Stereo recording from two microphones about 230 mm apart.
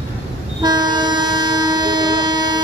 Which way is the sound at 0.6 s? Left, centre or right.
Centre.